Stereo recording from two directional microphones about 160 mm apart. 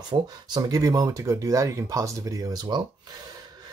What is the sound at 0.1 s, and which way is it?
Speech, 25° right (ahead or behind).